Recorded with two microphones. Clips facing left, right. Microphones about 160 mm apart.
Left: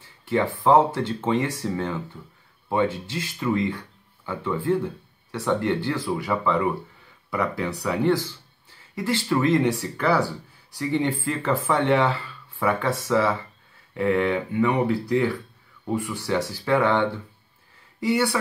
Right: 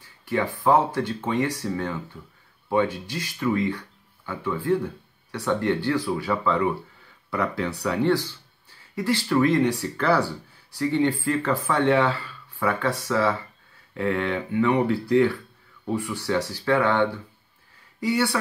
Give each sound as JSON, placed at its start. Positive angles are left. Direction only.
{"t": 0.3, "sound": "speech", "side_deg": 25}
{"t": 18.0, "sound": "speech", "side_deg": 20}